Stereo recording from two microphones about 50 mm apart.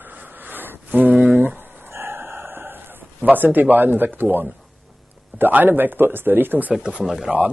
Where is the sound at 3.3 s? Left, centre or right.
Right.